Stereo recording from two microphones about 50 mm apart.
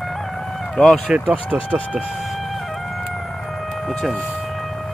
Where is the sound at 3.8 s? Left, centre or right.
Centre.